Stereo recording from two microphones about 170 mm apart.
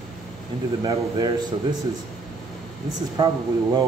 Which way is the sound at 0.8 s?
25° right (ahead or behind).